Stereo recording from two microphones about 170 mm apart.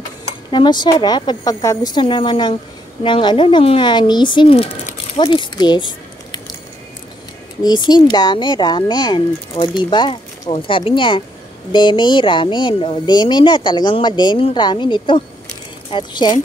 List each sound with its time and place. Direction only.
0.5 s a woman's voice: 25° left (ahead or behind)
4.9 s a sound: 30° left (ahead or behind)
7.6 s a woman's voice: 25° left (ahead or behind)